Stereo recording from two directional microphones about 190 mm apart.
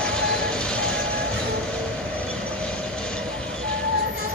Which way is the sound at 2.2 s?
5° left (ahead or behind).